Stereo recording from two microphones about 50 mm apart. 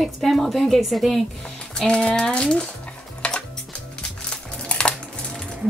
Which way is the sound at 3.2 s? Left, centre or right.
Left.